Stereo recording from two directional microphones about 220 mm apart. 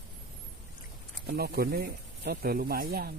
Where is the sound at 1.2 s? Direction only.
45° right (ahead or behind).